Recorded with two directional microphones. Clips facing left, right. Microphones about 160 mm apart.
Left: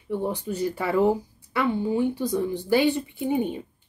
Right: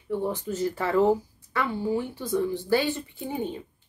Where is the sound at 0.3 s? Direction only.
15° left (ahead or behind).